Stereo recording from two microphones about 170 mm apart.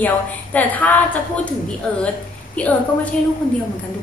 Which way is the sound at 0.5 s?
10° left (ahead or behind).